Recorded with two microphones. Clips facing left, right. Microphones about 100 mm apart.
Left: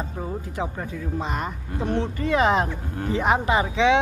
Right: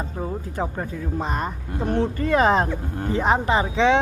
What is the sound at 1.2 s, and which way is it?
Speech, 35° right (ahead or behind).